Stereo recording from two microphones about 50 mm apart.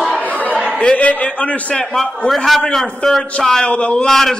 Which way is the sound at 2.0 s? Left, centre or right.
Centre.